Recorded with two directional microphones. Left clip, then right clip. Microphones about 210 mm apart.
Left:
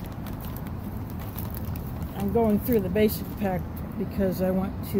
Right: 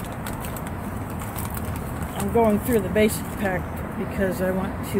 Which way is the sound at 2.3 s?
40° left (ahead or behind).